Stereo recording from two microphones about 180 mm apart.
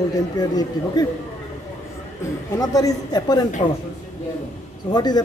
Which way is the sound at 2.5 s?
20° left (ahead or behind).